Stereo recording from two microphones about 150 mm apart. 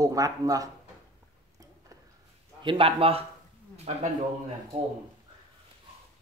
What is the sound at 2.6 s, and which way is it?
Speech, 35° right (ahead or behind).